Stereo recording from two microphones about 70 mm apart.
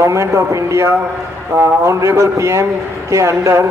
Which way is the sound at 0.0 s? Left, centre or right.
Right.